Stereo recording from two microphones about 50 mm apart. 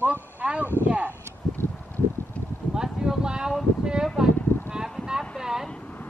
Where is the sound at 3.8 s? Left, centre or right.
Centre.